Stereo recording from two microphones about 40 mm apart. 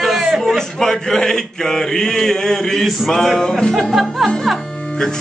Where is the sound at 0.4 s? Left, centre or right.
Centre.